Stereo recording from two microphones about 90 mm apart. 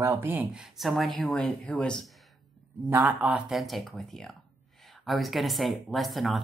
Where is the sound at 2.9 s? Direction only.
20° right (ahead or behind).